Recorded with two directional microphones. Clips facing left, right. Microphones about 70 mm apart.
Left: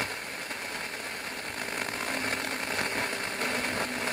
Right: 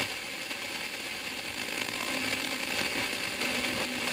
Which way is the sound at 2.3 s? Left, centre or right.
Left.